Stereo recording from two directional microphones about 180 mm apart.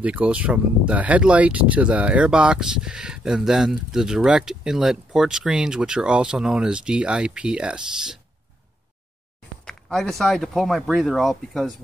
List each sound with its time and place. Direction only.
0.0 s speech: 5° right (ahead or behind)
9.7 s speech: 5° left (ahead or behind)